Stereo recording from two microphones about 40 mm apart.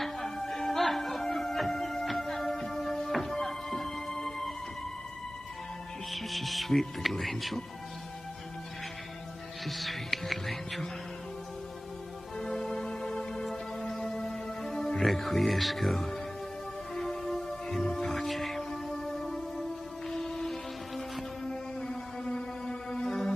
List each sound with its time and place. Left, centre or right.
0.0 s music: centre
6.1 s speech: centre
9.7 s speech: centre
12.4 s music: centre
15.0 s speech: centre
16.9 s music: centre